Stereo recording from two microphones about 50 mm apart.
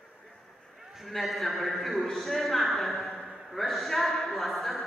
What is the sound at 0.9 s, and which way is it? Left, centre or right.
A man's voice, centre.